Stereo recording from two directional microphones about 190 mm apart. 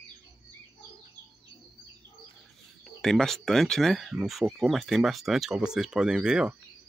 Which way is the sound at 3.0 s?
Centre (ahead or behind).